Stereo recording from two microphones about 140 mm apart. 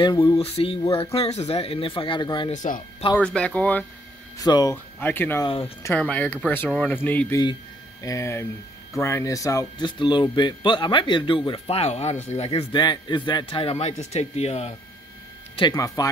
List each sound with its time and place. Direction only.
0.0 s speech: 30° left (ahead or behind)
2.5 s speech: 65° left (ahead or behind)
3.2 s speech: 5° left (ahead or behind)
4.4 s speech: 25° left (ahead or behind)
5.0 s speech: 15° left (ahead or behind); by 12.6 s 45° left (ahead or behind)
12.7 s speech: 30° left (ahead or behind); by 14.7 s 50° left (ahead or behind)
15.5 s speech: 30° left (ahead or behind)